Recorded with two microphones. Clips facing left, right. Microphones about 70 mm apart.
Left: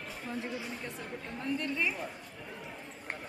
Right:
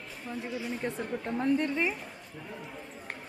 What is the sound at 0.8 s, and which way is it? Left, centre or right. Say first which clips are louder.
Speech: right 8 dB; right.